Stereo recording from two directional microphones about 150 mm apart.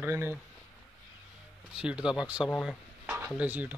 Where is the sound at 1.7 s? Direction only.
5° right (ahead or behind).